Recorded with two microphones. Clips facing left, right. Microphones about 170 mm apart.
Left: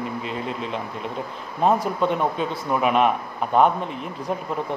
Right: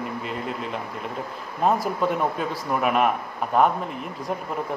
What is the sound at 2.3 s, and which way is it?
Speech, 25° left (ahead or behind).